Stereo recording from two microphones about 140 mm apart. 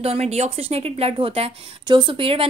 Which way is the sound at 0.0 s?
50° right (ahead or behind).